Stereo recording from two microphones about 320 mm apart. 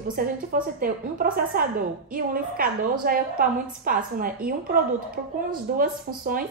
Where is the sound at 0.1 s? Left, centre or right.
Right.